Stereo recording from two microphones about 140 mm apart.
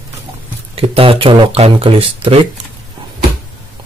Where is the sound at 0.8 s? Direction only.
40° right (ahead or behind).